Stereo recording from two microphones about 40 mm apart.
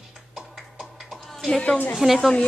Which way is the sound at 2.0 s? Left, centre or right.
Centre.